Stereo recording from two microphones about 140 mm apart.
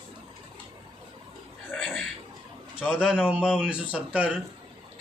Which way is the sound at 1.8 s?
Centre (ahead or behind).